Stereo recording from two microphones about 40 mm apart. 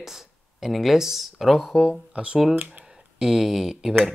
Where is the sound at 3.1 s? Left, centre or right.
Centre.